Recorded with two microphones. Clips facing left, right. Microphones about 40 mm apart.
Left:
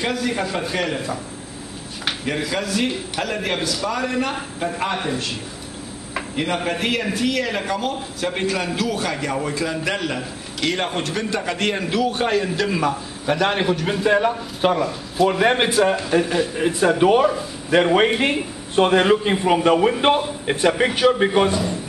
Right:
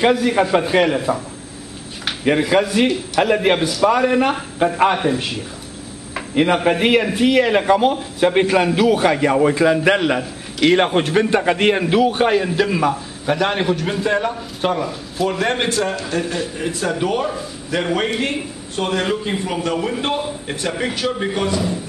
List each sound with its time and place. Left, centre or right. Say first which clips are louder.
0.0 s a man's voice: right 7 dB; centre
0.9 s speech: right 6 dB; centre
2.2 s a man's voice: right 10 dB; right
4.9 s a man's voice: right 5 dB; centre
6.3 s a man's voice: right 8 dB; centre